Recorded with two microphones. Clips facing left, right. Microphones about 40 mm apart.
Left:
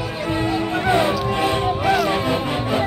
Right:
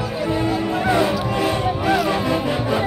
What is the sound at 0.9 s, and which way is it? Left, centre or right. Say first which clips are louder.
Music: left 1 dB; left.